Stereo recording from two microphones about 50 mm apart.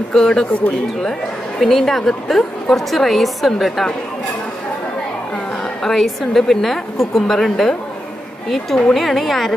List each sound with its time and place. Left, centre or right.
0.1 s speech: centre
1.6 s a woman's voice: centre
5.9 s a woman's voice: centre